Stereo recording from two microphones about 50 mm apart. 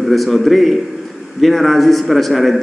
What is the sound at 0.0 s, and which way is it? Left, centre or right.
A man's voice, centre.